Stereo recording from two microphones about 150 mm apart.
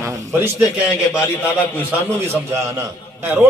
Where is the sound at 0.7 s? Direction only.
15° left (ahead or behind).